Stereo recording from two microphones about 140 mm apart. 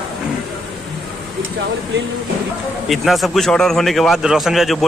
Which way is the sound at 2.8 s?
Centre (ahead or behind).